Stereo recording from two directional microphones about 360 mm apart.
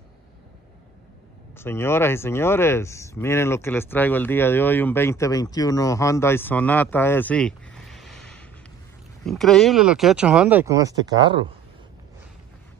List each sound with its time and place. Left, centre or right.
1.6 s speech: centre